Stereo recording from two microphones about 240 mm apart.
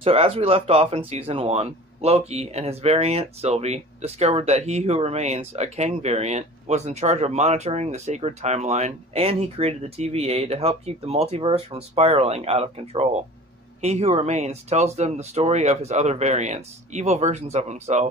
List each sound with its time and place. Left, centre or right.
0.0 s speech: right